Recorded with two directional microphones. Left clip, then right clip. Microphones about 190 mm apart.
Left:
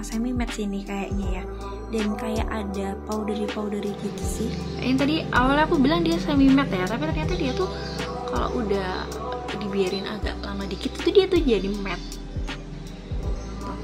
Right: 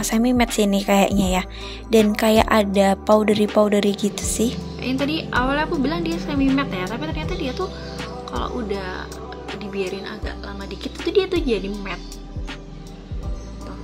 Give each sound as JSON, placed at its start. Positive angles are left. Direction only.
{"t": 0.0, "sound": "speech", "side_deg": -45}
{"t": 4.8, "sound": "a woman's voice", "side_deg": 5}
{"t": 6.8, "sound": "speech", "side_deg": 0}